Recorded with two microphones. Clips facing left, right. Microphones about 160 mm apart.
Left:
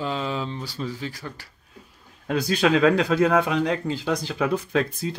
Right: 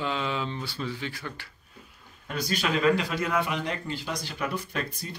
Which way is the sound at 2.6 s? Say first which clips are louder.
Left 9 dB; 90° left.